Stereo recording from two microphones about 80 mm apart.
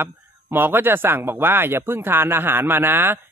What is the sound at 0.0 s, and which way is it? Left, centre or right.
A man's voice, right.